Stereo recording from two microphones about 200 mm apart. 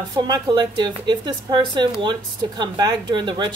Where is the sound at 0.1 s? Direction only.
20° right (ahead or behind).